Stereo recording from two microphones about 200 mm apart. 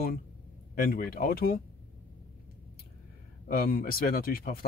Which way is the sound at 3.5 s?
45° left (ahead or behind).